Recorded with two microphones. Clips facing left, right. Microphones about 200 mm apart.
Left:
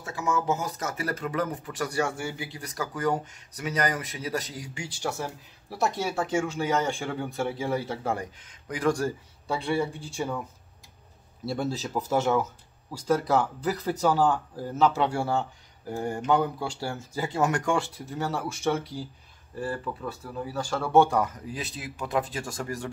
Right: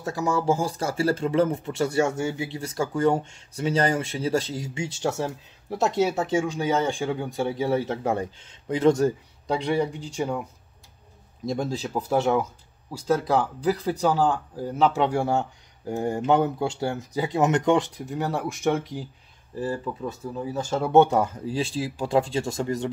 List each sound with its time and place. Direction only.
0.0 s speech: 35° right (ahead or behind); by 10.4 s 15° right (ahead or behind)
11.5 s speech: 10° right (ahead or behind)
13.7 s speech: 10° right (ahead or behind)